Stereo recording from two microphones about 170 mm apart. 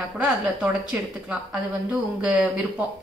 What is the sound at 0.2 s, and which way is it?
A woman's voice, 5° right (ahead or behind).